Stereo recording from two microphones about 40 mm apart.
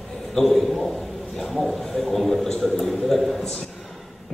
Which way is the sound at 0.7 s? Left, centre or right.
Centre.